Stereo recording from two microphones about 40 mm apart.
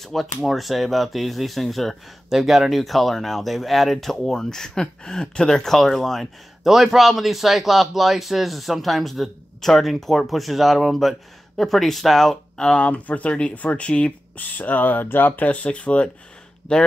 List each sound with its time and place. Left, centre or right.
0.0 s a man's voice: centre
6.7 s a man's voice: centre
12.5 s speech: left
12.8 s speech: left
14.3 s speech: left